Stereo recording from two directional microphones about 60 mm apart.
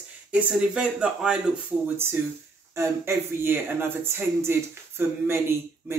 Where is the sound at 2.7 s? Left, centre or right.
Right.